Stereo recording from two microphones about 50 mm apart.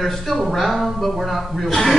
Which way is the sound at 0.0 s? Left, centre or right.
Centre.